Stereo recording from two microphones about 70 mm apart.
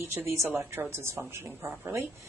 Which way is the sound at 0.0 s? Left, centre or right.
Right.